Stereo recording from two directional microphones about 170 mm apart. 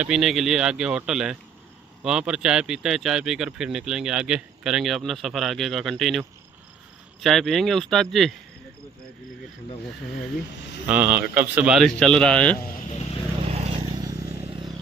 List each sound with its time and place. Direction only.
0.0 s speech: centre (ahead or behind)
10.9 s speech: 10° right (ahead or behind); by 12.5 s 5° left (ahead or behind)
13.5 s vehicle: 40° right (ahead or behind)
13.8 s vehicle: 20° right (ahead or behind)
14.4 s a sound: 30° right (ahead or behind)